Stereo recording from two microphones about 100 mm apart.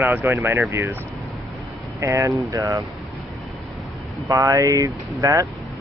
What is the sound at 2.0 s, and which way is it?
Speech, 30° right (ahead or behind).